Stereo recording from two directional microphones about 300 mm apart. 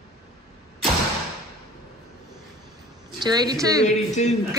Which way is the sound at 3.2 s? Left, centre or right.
Centre.